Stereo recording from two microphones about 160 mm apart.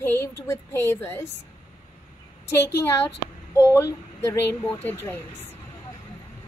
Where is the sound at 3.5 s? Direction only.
20° left (ahead or behind).